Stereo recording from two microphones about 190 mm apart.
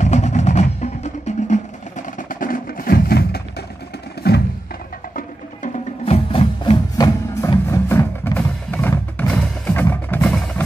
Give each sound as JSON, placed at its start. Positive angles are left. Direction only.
{"t": 0.0, "sound": "music", "side_deg": 35}
{"t": 5.1, "sound": "music", "side_deg": 35}